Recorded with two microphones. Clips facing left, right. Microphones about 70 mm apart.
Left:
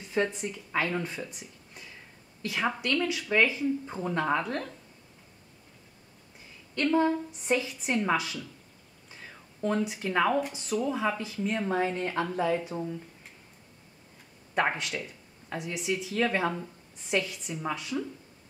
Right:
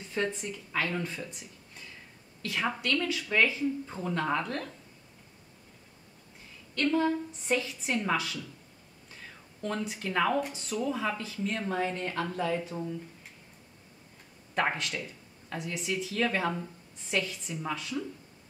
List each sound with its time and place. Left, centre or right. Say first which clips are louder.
0.1 s speech: left 3 dB; centre
1.7 s a sound: left 1 dB; centre
2.4 s speech: left 2 dB; centre
6.8 s speech: left 2 dB; centre
14.5 s speech: left 2 dB; centre